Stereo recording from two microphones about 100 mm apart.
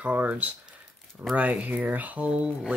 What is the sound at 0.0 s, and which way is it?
Speech, 15° right (ahead or behind).